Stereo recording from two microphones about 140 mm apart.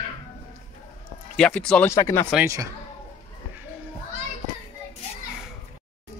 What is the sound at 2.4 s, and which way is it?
Speech, 20° right (ahead or behind).